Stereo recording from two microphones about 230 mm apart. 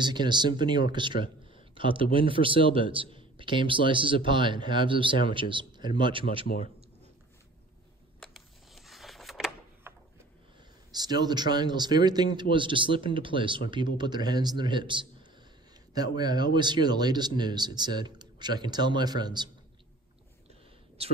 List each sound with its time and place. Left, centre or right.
0.0 s a man's voice: centre
8.2 s a sound: centre
10.9 s a man's voice: centre